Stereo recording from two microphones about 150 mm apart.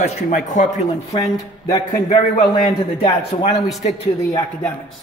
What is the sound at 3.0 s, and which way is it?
Speech, 45° left (ahead or behind).